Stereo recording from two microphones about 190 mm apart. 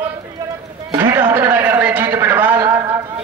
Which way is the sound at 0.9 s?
25° right (ahead or behind).